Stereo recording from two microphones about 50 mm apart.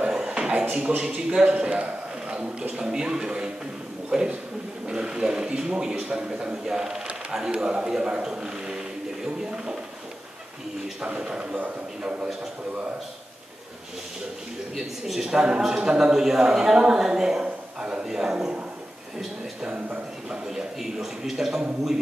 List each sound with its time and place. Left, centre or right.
0.1 s a sound: centre
2.7 s a man's voice: centre
11.1 s a man's voice: centre
14.8 s speech: centre
19.7 s a man's voice: right
20.4 s speech: centre